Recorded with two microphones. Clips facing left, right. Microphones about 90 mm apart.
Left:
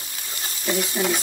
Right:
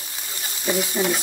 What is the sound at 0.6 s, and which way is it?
Frying, 5° right (ahead or behind).